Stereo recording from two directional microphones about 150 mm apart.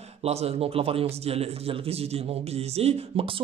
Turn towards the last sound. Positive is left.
turn(degrees=-40)  # may be behind; listen again after turning